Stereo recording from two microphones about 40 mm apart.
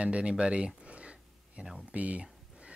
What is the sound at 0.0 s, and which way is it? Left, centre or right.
Speech, right.